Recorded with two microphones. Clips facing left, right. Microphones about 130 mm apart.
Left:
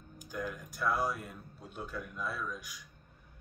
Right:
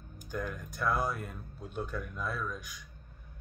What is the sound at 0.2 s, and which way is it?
Speech, 5° left (ahead or behind).